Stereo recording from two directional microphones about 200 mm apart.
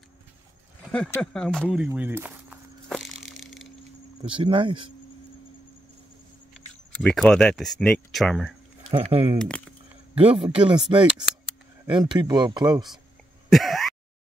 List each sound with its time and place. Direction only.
1.1 s speech: 5° left (ahead or behind)
1.9 s a sound: 10° right (ahead or behind)
4.2 s speech: 25° right (ahead or behind)
7.0 s speech: 5° left (ahead or behind)
8.9 s speech: 30° right (ahead or behind)
9.4 s speech: 5° left (ahead or behind)
10.1 s speech: 25° right (ahead or behind)
11.9 s speech: 20° right (ahead or behind)
13.5 s throat clearing: centre (ahead or behind)